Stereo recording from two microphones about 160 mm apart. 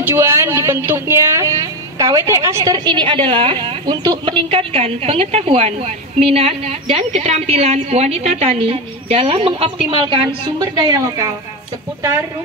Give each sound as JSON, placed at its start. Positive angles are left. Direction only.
{"t": 0.0, "sound": "speech", "side_deg": -15}